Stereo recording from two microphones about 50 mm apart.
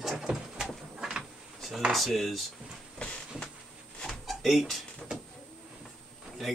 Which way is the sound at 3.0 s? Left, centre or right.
Left.